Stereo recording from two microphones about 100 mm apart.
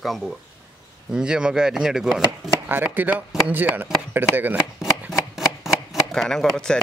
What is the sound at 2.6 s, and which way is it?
Speech, 20° right (ahead or behind).